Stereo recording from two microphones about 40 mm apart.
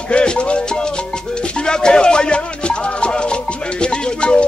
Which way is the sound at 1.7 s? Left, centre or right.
Left.